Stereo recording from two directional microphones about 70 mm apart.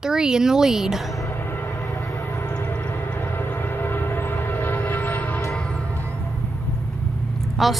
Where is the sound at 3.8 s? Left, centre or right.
Left.